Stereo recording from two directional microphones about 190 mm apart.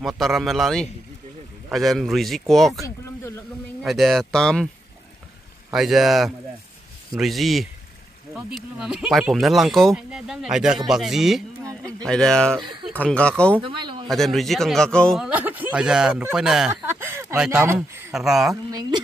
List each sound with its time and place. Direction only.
0.0 s speech: centre (ahead or behind)
3.8 s speech: centre (ahead or behind)
5.7 s speech: centre (ahead or behind)
13.6 s speech: 25° right (ahead or behind)
14.0 s speech: centre (ahead or behind)
16.8 s a sound: 15° right (ahead or behind)
17.4 s speech: 5° right (ahead or behind)